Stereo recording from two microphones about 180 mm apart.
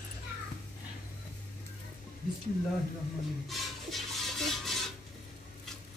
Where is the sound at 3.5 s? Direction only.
Centre (ahead or behind).